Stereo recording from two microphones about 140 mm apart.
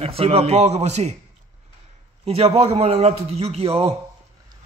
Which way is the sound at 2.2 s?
45° right (ahead or behind).